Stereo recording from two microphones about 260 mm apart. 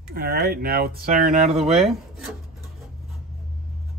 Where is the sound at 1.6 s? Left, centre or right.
Centre.